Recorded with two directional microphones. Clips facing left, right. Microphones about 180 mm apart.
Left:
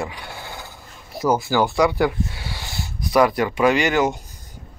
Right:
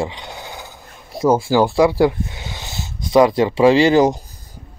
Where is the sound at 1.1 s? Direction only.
30° right (ahead or behind).